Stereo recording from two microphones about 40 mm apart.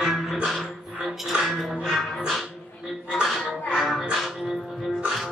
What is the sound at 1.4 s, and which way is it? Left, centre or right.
Music, centre.